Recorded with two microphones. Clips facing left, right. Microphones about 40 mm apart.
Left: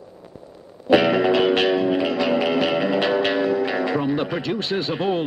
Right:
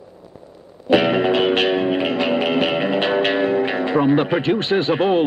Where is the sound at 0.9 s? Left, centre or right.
Right.